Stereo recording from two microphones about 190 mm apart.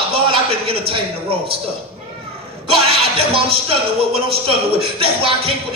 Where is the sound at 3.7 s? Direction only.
30° right (ahead or behind).